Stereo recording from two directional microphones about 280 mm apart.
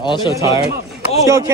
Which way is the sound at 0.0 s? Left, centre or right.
Centre.